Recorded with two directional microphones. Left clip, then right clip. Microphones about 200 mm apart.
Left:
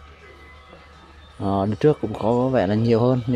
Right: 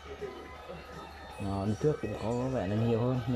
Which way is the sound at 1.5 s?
30° left (ahead or behind).